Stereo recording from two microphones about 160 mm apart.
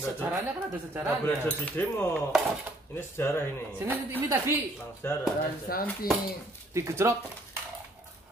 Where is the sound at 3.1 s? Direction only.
15° left (ahead or behind).